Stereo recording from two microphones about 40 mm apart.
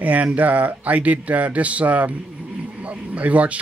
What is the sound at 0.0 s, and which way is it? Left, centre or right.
Speech, right.